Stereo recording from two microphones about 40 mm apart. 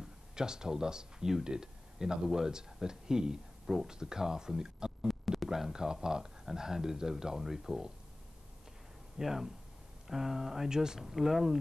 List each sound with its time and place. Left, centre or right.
0.0 s speech: centre
3.6 s speech: centre
3.9 s speech: centre
5.0 s a sound: centre
5.5 s speech: centre
9.2 s speech: centre
11.0 s speech: centre